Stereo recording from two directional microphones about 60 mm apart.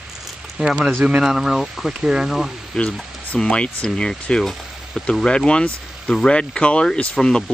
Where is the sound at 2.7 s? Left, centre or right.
Centre.